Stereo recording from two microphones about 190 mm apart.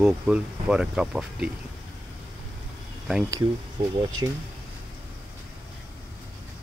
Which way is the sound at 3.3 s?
20° right (ahead or behind).